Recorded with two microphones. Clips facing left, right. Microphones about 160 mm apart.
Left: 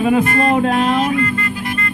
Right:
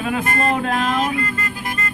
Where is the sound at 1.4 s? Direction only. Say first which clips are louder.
Left 4 dB; 40° right (ahead or behind).